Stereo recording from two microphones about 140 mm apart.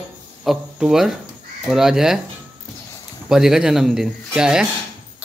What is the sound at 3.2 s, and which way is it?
Speech, 5° right (ahead or behind).